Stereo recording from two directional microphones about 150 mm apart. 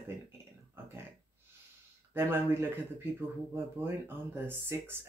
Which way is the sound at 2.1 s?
15° right (ahead or behind).